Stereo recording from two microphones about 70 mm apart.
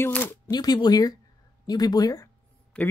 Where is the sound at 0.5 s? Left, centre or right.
Left.